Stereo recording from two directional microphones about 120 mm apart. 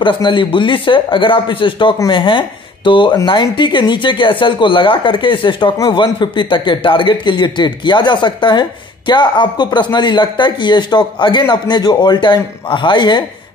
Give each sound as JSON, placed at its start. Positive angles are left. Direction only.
{"t": 0.0, "sound": "a man's voice", "side_deg": 45}